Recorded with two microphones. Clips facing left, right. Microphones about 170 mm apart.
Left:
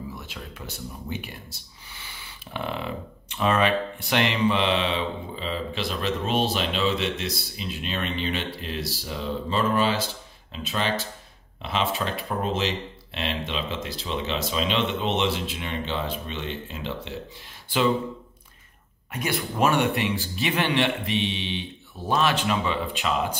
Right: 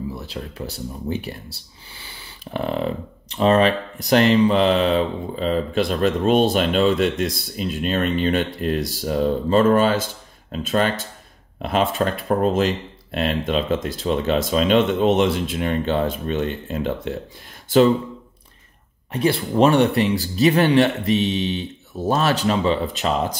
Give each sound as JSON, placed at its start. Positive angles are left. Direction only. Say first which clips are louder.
{"t": 0.1, "sound": "speech", "louder": "right 7 dB", "side_deg": -35}
{"t": 19.1, "sound": "speech", "louder": "right 8 dB", "side_deg": -30}